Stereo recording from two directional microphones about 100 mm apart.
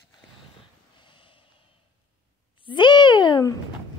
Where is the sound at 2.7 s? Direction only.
50° left (ahead or behind).